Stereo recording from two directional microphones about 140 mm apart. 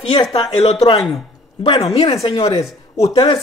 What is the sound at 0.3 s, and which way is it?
Speech, 45° left (ahead or behind).